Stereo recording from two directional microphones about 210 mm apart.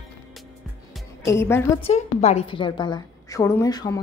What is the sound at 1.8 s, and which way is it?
Speech, 30° left (ahead or behind).